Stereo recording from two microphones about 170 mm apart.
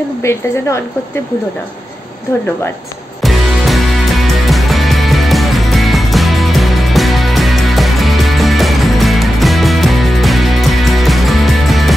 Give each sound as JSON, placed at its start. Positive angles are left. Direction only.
{"t": 0.2, "sound": "speech", "side_deg": 15}
{"t": 3.2, "sound": "music", "side_deg": 0}